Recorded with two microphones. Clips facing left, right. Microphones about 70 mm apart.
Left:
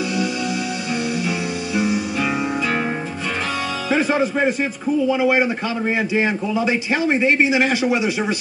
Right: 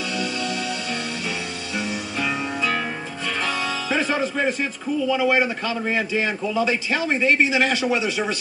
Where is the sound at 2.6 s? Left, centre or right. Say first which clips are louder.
Left 3 dB; left.